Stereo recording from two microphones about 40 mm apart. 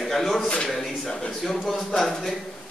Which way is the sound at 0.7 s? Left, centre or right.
Centre.